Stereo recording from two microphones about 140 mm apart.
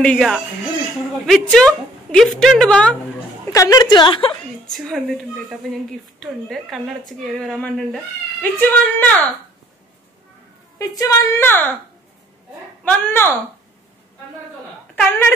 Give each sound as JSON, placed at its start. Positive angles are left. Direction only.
{"t": 0.0, "sound": "a woman's voice", "side_deg": 5}
{"t": 3.5, "sound": "a woman's voice", "side_deg": 25}
{"t": 4.6, "sound": "a woman's voice", "side_deg": 0}
{"t": 10.8, "sound": "a woman's voice", "side_deg": 25}
{"t": 12.8, "sound": "speech", "side_deg": 15}
{"t": 15.0, "sound": "speech", "side_deg": 10}